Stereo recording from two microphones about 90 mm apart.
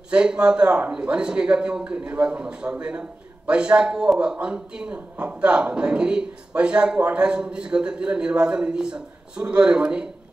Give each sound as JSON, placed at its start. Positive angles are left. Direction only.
{"t": 0.1, "sound": "a man's voice", "side_deg": -10}